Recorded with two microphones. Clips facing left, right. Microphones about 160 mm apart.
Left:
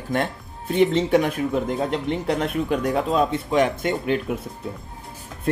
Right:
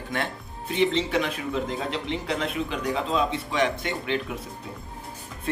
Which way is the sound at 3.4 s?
45° left (ahead or behind).